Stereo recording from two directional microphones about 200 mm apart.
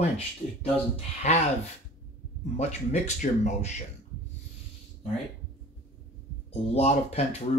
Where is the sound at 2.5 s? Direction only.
35° left (ahead or behind).